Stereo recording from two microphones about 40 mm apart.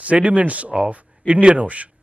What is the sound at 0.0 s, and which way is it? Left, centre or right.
A man's voice, right.